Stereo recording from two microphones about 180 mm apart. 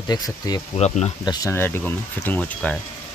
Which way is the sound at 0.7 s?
35° left (ahead or behind).